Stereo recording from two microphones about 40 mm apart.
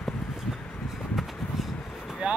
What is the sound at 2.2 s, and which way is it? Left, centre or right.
Vehicle, right.